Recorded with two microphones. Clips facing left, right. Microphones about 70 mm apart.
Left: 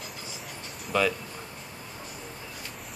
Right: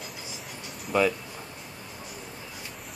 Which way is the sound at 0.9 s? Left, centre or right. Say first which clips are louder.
Right 2 dB; right.